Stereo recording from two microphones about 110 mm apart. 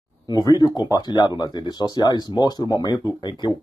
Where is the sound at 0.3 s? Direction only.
35° left (ahead or behind).